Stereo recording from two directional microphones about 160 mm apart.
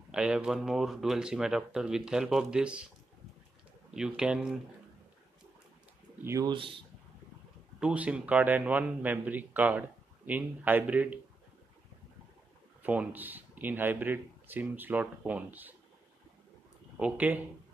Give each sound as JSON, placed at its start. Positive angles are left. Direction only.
{"t": 0.1, "sound": "speech", "side_deg": -5}
{"t": 3.9, "sound": "speech", "side_deg": -5}
{"t": 6.2, "sound": "speech", "side_deg": -20}
{"t": 6.5, "sound": "speech", "side_deg": -35}
{"t": 7.8, "sound": "a man's voice", "side_deg": -10}
{"t": 12.8, "sound": "a man's voice", "side_deg": -10}
{"t": 16.9, "sound": "speech", "side_deg": -10}